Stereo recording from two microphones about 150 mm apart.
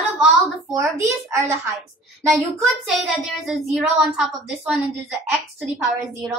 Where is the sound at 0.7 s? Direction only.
20° right (ahead or behind).